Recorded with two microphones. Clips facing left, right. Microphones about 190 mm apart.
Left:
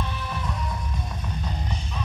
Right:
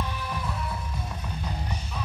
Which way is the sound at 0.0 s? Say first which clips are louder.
Left 1 dB; 10° right (ahead or behind).